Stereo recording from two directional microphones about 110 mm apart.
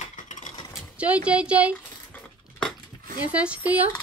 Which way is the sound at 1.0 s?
10° right (ahead or behind).